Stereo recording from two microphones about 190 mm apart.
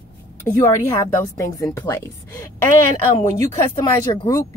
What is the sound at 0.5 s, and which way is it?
A woman's voice, 15° left (ahead or behind).